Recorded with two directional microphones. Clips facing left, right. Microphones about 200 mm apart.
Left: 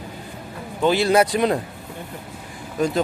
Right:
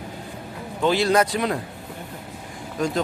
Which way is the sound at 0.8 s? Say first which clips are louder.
Left 2 dB; 5° left (ahead or behind).